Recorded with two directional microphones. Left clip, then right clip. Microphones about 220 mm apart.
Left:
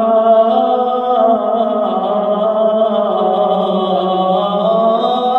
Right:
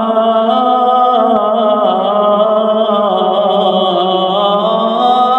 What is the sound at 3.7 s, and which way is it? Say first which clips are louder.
Chant: right 3 dB; 40° right (ahead or behind).